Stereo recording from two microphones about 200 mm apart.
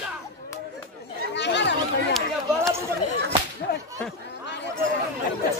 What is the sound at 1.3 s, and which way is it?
Chatter, 60° left (ahead or behind).